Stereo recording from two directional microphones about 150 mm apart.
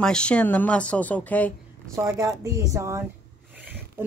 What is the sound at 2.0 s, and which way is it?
Speech, 20° right (ahead or behind).